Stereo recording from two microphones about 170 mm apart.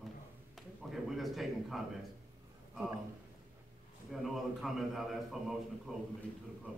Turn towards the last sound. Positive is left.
turn(degrees=5)  # may be behind; listen again after turning